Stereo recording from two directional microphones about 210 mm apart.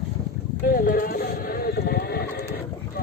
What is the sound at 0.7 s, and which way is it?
Clip-clop, 45° left (ahead or behind).